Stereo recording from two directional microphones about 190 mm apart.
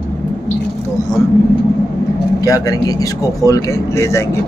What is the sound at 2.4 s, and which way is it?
Speech, 20° left (ahead or behind).